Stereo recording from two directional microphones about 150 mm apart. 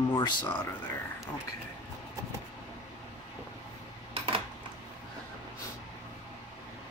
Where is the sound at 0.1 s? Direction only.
30° left (ahead or behind).